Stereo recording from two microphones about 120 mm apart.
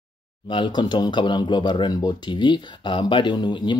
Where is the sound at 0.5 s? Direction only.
40° left (ahead or behind).